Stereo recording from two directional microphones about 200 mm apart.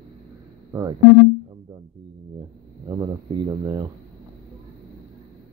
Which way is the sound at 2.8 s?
20° right (ahead or behind).